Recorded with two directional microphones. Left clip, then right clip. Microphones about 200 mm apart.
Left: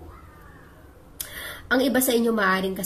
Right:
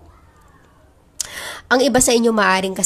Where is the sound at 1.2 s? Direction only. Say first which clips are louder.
Right 7 dB; 45° right (ahead or behind).